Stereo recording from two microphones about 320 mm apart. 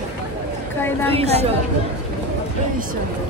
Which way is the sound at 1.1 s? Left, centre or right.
Centre.